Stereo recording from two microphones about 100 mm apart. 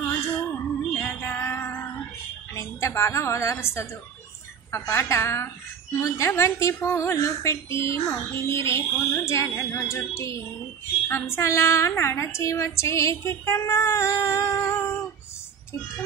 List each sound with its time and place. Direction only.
0.0 s a sound: 25° left (ahead or behind)
0.9 s music: 20° left (ahead or behind)
2.5 s a woman's voice: 30° left (ahead or behind)